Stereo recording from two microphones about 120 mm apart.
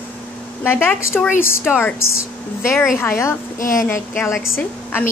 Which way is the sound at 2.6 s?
20° left (ahead or behind).